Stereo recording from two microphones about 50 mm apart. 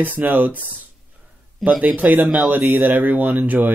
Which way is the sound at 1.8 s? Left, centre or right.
Right.